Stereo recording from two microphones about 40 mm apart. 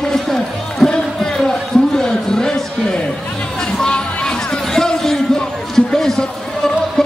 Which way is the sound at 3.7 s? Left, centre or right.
Centre.